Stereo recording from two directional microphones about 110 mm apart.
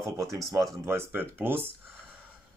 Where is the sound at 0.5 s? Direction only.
30° right (ahead or behind).